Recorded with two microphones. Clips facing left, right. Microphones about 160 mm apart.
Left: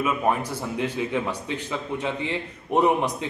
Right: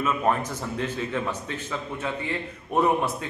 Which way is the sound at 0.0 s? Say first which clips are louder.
Left 1 dB; 10° left (ahead or behind).